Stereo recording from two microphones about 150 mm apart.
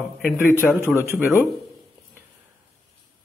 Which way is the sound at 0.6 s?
15° left (ahead or behind).